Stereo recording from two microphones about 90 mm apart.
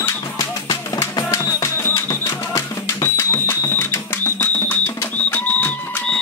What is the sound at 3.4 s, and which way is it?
Music, 30° left (ahead or behind).